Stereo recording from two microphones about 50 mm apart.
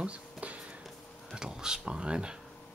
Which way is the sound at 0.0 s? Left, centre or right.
Right.